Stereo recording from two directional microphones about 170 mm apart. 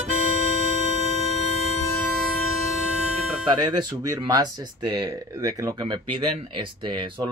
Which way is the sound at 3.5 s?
25° right (ahead or behind).